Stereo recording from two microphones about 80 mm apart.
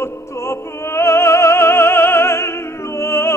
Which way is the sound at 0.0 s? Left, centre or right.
Left.